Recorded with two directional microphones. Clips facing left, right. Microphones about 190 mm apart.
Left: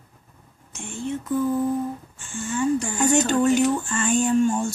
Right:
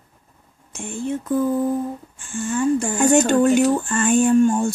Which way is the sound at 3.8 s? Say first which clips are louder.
Right 5 dB; 55° right (ahead or behind).